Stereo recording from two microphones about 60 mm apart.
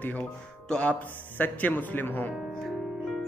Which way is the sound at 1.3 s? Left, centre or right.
Left.